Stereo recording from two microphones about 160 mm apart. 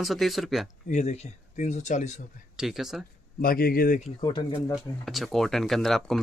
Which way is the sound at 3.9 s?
45° left (ahead or behind).